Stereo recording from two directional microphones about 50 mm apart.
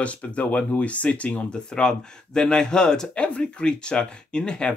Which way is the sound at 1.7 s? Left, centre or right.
Centre.